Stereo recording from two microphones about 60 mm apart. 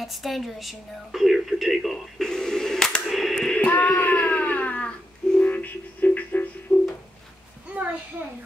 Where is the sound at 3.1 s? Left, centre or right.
Centre.